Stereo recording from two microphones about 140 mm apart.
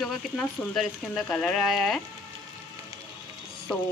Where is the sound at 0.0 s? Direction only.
Centre (ahead or behind).